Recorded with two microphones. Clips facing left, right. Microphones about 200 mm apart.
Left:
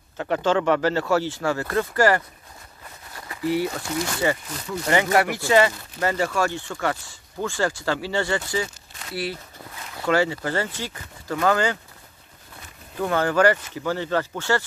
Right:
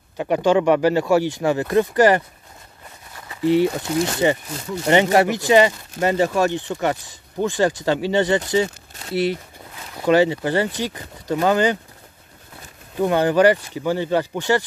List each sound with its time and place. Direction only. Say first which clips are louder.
0.2 s speech: right 4 dB; 15° right (ahead or behind)
3.3 s speech: right 7 dB; 20° right (ahead or behind)
13.0 s speech: right 4 dB; 20° right (ahead or behind)